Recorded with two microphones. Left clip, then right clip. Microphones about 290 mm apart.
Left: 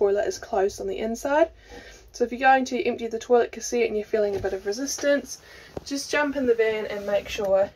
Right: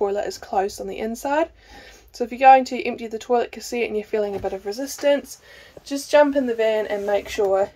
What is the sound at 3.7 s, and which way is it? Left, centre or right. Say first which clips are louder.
Speech: even; right.